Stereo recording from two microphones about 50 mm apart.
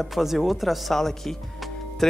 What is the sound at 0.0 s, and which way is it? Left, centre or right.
Speech, centre.